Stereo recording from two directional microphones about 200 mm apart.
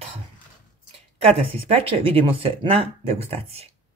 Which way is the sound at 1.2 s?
30° right (ahead or behind).